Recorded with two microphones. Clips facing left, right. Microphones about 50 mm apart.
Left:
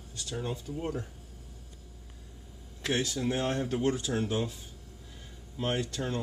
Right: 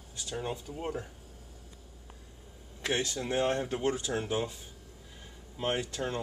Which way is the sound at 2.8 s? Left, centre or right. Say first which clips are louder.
Left 2 dB; centre.